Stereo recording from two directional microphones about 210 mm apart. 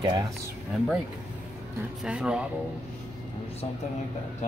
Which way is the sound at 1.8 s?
5° right (ahead or behind).